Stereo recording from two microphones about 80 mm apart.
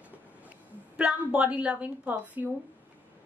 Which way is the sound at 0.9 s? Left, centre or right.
Centre.